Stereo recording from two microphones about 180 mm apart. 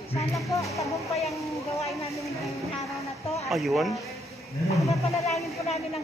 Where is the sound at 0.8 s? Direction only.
Centre (ahead or behind).